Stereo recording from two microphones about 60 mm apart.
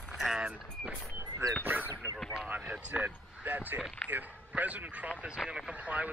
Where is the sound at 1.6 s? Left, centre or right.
Right.